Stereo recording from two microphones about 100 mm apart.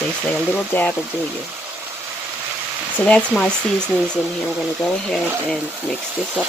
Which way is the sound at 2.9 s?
10° left (ahead or behind).